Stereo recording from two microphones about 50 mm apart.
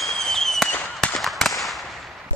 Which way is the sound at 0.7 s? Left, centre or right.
Left.